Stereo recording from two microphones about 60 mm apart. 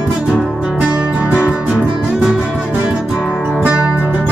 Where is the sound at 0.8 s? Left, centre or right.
Right.